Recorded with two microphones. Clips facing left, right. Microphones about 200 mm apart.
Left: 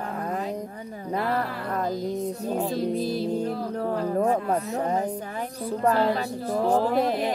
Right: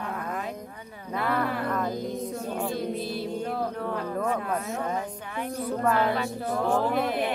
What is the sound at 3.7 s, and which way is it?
Speech, 35° left (ahead or behind).